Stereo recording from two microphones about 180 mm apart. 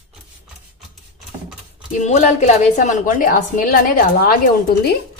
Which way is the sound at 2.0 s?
40° left (ahead or behind).